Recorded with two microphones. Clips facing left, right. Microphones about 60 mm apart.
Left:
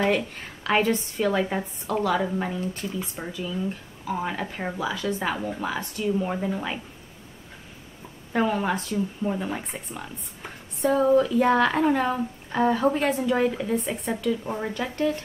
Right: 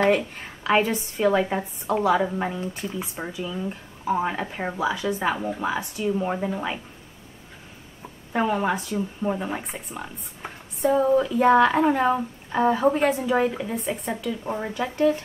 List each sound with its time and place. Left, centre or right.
0.1 s speech: centre
8.3 s speech: centre
10.8 s speech: centre